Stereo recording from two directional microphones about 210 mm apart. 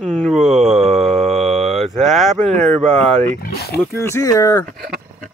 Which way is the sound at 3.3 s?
50° left (ahead or behind).